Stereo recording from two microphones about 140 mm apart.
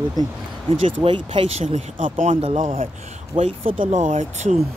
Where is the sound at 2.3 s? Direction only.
45° right (ahead or behind).